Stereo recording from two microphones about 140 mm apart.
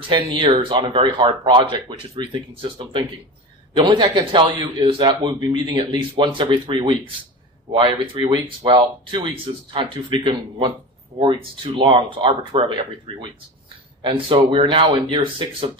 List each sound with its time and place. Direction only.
0.1 s speech: 35° right (ahead or behind)